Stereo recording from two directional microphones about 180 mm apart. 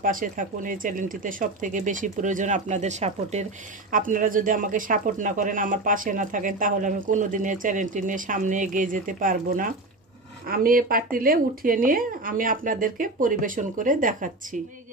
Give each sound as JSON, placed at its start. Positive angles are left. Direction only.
{"t": 0.0, "sound": "speech", "side_deg": -50}